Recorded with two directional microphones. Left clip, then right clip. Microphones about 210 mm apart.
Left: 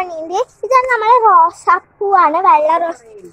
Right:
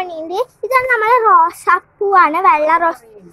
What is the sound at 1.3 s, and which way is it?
A child's voice, 25° right (ahead or behind).